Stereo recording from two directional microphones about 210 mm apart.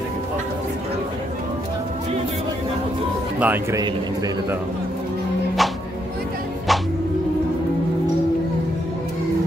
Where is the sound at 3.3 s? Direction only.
10° right (ahead or behind).